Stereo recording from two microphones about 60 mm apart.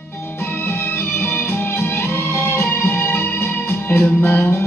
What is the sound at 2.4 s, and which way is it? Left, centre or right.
Music, left.